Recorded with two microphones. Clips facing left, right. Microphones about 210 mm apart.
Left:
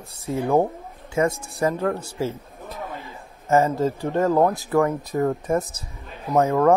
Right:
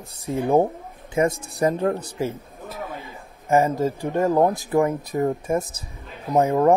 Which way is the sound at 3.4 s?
15° right (ahead or behind).